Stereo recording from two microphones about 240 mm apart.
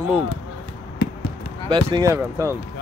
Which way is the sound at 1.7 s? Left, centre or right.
Right.